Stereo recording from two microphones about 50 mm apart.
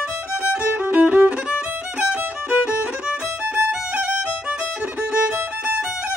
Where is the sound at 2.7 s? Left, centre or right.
Right.